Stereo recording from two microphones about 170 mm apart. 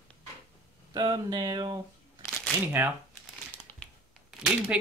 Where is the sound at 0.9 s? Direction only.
25° right (ahead or behind).